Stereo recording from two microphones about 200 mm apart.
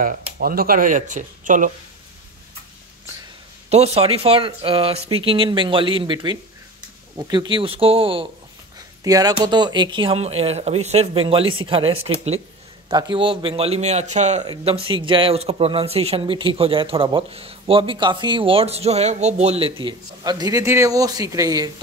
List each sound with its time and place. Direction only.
0.0 s speech: 45° right (ahead or behind)
3.7 s speech: 30° right (ahead or behind)